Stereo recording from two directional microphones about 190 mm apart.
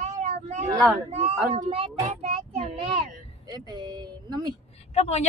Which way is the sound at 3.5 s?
20° right (ahead or behind).